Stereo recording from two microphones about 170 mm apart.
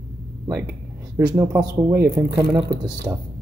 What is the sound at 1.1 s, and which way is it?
Speech, 20° right (ahead or behind).